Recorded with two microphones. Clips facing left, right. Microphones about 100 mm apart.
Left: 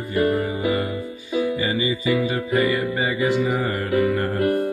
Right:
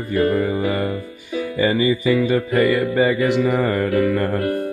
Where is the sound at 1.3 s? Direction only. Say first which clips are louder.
Left 2 dB; 20° left (ahead or behind).